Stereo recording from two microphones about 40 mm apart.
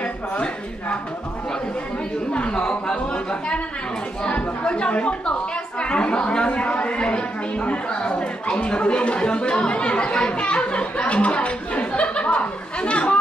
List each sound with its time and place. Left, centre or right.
0.0 s a woman's voice: left
2.3 s a woman's voice: left